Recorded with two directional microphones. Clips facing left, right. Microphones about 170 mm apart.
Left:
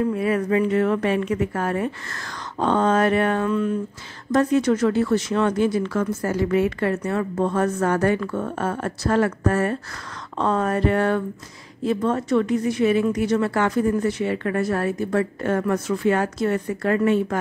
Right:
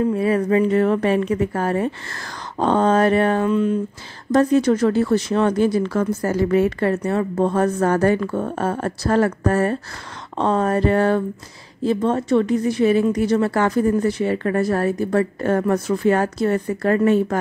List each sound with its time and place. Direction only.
0.0 s speech: 30° right (ahead or behind)
3.4 s a sound: 20° right (ahead or behind)
4.3 s speech: 35° right (ahead or behind)